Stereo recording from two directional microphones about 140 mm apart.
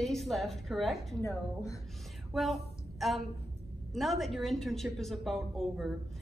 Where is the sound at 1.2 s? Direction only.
20° left (ahead or behind).